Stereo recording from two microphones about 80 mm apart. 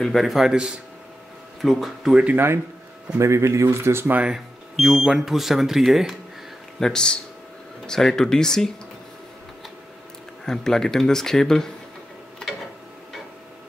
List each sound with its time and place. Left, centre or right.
0.0 s speech: centre
2.2 s speech: right
4.2 s speech: centre
6.8 s speech: centre
10.4 s speech: centre